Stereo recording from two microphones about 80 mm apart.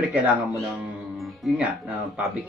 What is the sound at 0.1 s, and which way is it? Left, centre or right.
Speech, centre.